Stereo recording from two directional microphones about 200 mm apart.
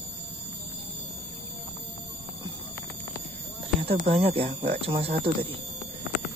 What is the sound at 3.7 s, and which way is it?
Speech, 30° right (ahead or behind).